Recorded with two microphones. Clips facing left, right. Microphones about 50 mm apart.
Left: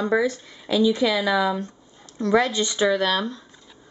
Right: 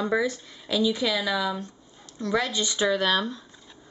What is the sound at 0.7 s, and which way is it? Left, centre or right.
Speech, centre.